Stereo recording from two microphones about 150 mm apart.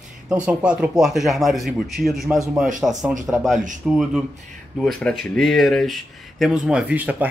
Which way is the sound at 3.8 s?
5° right (ahead or behind).